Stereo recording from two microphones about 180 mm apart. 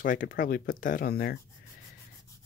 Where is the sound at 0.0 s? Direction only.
50° left (ahead or behind).